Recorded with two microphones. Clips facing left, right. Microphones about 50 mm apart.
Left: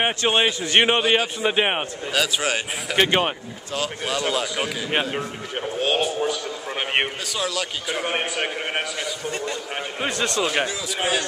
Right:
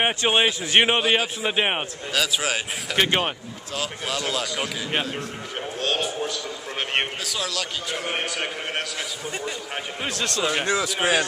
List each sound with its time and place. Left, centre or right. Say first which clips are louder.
0.0 s a man's voice: even; centre
8.0 s a man's voice: left 4 dB; centre
10.0 s speech: left 2 dB; centre